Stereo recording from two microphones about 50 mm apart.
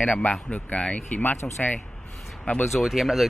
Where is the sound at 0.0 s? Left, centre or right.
Left.